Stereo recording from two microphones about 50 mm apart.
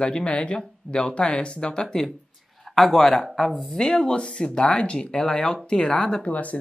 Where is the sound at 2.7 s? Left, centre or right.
Centre.